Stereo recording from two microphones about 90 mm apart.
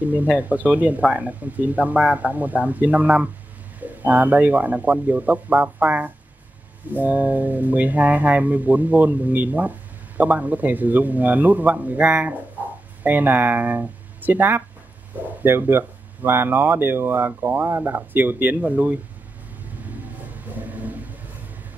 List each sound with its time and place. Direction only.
0.0 s speech: 15° right (ahead or behind)
19.9 s vehicle: 20° right (ahead or behind)